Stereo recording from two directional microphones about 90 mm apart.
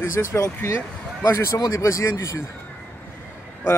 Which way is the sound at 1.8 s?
35° left (ahead or behind).